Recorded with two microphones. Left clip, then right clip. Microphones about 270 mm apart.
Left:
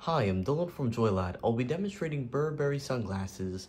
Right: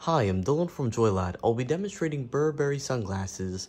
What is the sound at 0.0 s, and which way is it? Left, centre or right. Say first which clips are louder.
Speech: right 4 dB; right.